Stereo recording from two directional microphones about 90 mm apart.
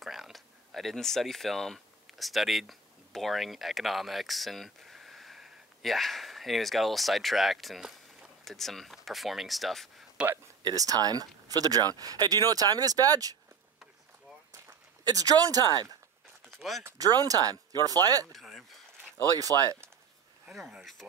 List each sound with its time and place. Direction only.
0.0 s speech: centre (ahead or behind)
10.6 s speech: 40° right (ahead or behind)
15.0 s speech: 45° right (ahead or behind)
16.4 s clip-clop: centre (ahead or behind)
17.0 s speech: 45° right (ahead or behind)
18.3 s a sound: centre (ahead or behind)
19.3 s speech: 40° right (ahead or behind)
20.4 s speech: 5° right (ahead or behind)